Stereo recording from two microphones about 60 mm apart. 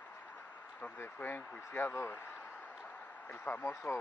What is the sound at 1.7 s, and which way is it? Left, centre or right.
Speech, left.